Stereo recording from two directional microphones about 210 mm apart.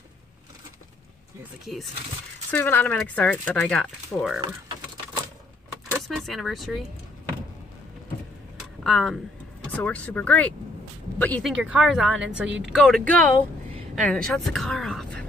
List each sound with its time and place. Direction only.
1.7 s speech: centre (ahead or behind)
5.9 s speech: centre (ahead or behind)
8.5 s a sound: centre (ahead or behind)
9.7 s speech: 5° left (ahead or behind)
11.5 s speech: 5° right (ahead or behind)
12.4 s speech: 60° right (ahead or behind)
12.7 s a woman's voice: centre (ahead or behind)